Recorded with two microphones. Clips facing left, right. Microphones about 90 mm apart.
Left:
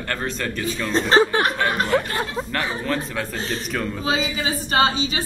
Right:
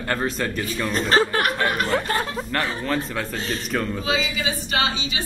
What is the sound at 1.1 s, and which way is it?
Speech, 25° left (ahead or behind).